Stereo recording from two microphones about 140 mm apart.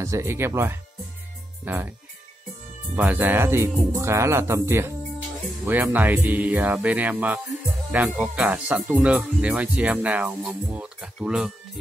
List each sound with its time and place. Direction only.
0.0 s speech: 20° right (ahead or behind)
3.0 s speech: 15° right (ahead or behind)